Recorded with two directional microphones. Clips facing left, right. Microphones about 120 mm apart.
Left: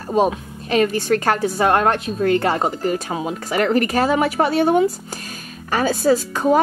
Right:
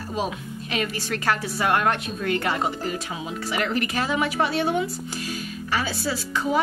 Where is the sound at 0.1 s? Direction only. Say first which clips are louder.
Left 11 dB; 45° left (ahead or behind).